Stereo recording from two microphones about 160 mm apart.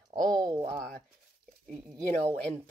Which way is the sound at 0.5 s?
35° right (ahead or behind).